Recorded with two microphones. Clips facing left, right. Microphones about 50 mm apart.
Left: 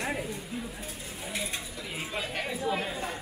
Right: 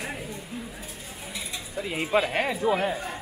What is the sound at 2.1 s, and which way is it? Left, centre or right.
Speech, right.